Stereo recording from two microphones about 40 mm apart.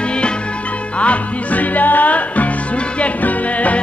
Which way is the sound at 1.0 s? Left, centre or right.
Left.